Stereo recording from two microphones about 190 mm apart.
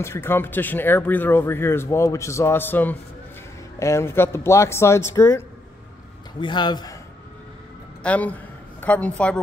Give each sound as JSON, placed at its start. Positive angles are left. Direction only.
{"t": 0.0, "sound": "speech", "side_deg": 15}
{"t": 6.4, "sound": "speech", "side_deg": 25}
{"t": 8.0, "sound": "a man's voice", "side_deg": 10}